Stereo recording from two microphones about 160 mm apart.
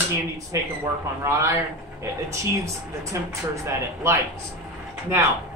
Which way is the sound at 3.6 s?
15° right (ahead or behind).